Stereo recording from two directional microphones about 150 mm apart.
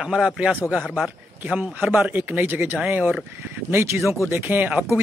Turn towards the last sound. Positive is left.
turn(degrees=-10)  # may be behind; listen again after turning